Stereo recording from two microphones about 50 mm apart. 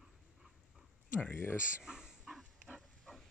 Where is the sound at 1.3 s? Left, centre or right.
Left.